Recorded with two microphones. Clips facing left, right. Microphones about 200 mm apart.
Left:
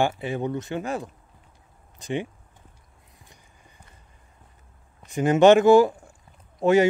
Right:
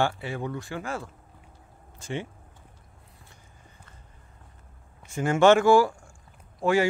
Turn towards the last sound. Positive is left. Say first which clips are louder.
# left 5 dB
turn(degrees=20)  # may be behind; listen again after turning